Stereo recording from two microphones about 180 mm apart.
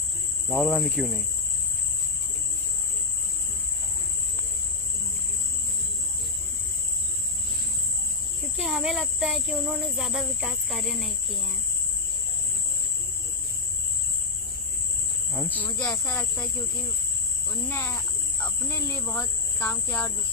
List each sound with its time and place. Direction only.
0.5 s speech: 5° right (ahead or behind)
8.5 s speech: centre (ahead or behind)
15.4 s speech: 10° left (ahead or behind)
17.6 s speech: 15° left (ahead or behind)